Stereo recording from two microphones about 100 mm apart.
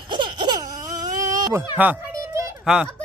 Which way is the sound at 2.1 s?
35° right (ahead or behind).